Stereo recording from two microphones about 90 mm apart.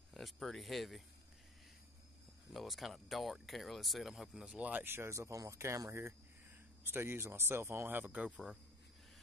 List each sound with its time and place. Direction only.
0.1 s speech: centre (ahead or behind)
2.5 s speech: centre (ahead or behind)